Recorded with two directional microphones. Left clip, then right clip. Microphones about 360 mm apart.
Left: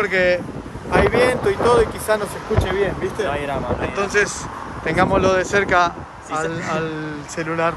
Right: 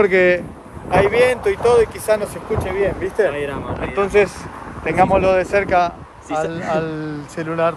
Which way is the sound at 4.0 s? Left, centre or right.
Centre.